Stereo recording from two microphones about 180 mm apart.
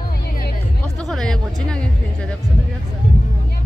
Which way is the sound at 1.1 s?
5° left (ahead or behind).